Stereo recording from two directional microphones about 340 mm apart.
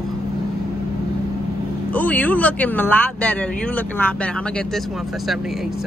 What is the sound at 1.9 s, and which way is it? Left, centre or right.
Speech, centre.